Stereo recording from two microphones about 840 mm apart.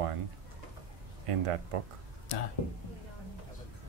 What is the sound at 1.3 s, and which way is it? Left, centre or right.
Speech, right.